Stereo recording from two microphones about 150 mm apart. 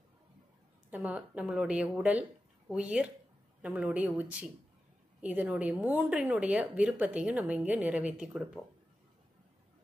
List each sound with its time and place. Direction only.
0.8 s speech: 10° right (ahead or behind)